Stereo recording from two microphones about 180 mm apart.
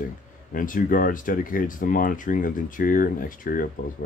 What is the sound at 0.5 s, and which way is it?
Speech, 50° left (ahead or behind).